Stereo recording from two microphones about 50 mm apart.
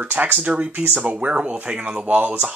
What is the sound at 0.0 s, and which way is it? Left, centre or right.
Speech, right.